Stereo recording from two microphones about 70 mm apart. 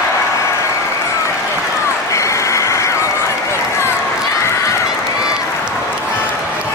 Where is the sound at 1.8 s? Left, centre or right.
Left.